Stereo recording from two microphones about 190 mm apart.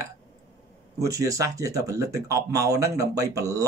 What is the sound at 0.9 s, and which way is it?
Speech, 15° right (ahead or behind).